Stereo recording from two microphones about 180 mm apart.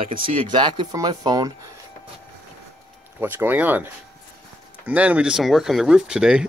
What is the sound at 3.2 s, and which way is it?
Speech, 10° right (ahead or behind).